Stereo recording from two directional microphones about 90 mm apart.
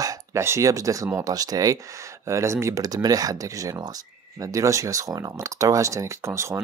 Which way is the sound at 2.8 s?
45° right (ahead or behind).